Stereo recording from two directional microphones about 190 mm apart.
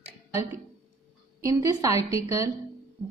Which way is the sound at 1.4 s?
15° right (ahead or behind).